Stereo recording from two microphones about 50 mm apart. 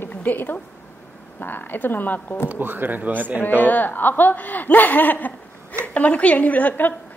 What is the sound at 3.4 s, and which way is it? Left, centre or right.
A woman's voice, left.